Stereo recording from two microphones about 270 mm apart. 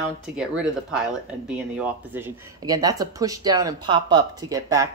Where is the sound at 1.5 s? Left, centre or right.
Centre.